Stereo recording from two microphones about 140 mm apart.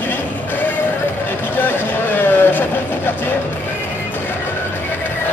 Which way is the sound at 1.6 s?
15° left (ahead or behind).